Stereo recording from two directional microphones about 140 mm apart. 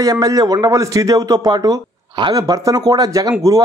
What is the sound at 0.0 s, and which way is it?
A man's voice, 25° right (ahead or behind).